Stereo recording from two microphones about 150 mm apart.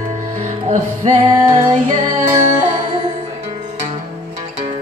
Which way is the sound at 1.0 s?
55° right (ahead or behind).